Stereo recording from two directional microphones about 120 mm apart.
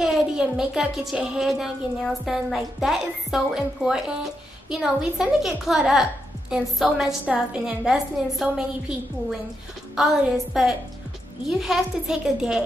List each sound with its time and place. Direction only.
0.0 s a woman's voice: 5° right (ahead or behind)